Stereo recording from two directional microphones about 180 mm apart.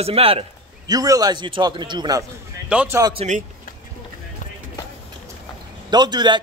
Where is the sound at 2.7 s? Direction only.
5° right (ahead or behind).